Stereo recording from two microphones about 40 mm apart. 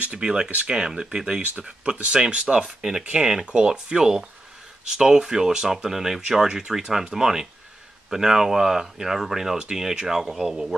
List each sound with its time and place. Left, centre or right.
0.2 s speech: centre
2.5 s speech: centre
3.0 s speech: right